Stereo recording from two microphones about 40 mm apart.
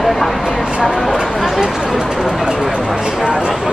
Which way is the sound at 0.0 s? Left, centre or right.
Centre.